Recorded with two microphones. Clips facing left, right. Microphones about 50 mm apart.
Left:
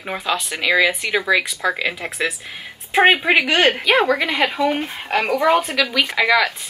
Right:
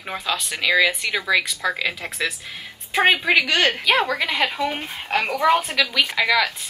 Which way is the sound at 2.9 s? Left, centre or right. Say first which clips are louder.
Left 3 dB; left.